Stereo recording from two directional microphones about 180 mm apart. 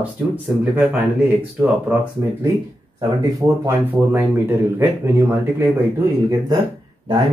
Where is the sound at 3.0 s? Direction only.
20° right (ahead or behind).